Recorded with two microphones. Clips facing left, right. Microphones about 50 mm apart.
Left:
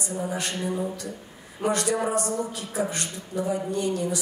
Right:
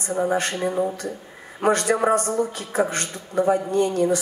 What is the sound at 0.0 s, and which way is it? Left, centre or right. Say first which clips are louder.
A man's voice: right 7 dB; right.